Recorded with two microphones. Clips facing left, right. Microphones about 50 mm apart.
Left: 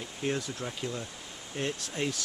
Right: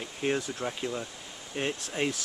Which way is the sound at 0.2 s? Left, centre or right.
Right.